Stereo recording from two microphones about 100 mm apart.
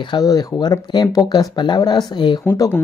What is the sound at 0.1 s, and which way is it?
Speech, 40° left (ahead or behind).